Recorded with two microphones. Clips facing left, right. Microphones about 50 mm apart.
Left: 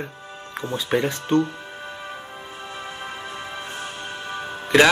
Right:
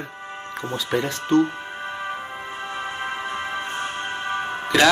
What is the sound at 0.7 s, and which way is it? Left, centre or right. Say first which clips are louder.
Speech: left 2 dB; left.